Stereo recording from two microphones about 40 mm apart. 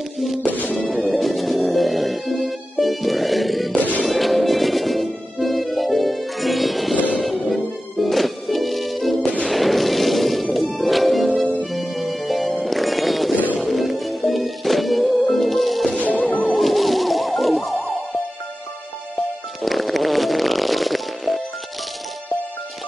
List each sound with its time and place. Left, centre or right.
0.2 s music: centre
16.0 s music: left
16.5 s music: centre
19.6 s music: centre